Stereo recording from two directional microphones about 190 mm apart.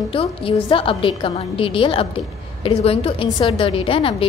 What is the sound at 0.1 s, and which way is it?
A woman's voice, 30° left (ahead or behind).